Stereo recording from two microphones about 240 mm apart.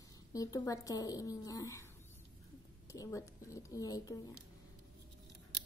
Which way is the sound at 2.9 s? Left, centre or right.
Centre.